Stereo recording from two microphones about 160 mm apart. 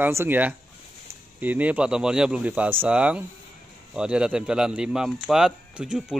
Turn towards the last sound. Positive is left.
turn(degrees=-5)  # may be behind; listen again after turning